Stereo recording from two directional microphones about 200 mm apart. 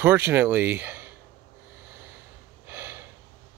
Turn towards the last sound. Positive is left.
turn(degrees=-15)  # may be behind; listen again after turning